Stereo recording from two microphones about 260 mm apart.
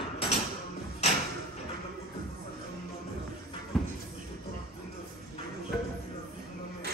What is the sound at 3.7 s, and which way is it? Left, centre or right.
Music, centre.